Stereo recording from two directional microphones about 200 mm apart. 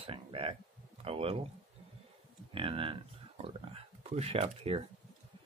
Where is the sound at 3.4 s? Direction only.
30° right (ahead or behind).